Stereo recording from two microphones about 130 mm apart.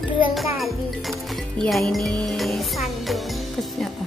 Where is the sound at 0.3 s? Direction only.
Centre (ahead or behind).